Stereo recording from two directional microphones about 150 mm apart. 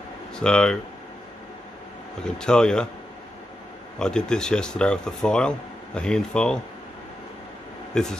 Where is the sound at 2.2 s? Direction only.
5° left (ahead or behind).